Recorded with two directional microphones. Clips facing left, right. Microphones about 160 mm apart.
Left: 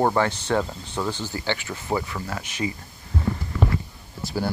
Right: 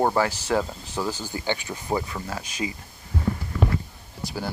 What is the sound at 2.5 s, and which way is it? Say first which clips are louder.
Speech: left 4 dB; 25° left (ahead or behind).